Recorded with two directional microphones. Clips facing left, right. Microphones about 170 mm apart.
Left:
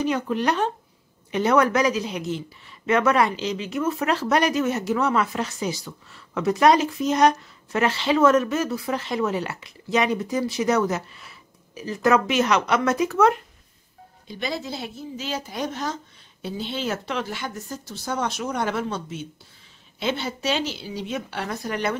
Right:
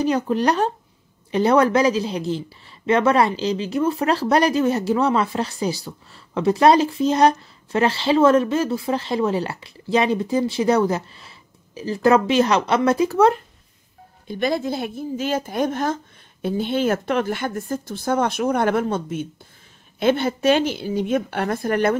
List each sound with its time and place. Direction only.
0.0 s speech: 35° right (ahead or behind)
14.2 s speech: 50° right (ahead or behind)